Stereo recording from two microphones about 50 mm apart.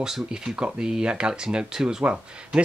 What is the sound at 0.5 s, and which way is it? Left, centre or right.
Speech, centre.